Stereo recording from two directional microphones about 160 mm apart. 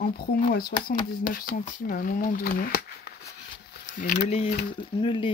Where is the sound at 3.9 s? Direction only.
50° left (ahead or behind); by 5.3 s 30° left (ahead or behind).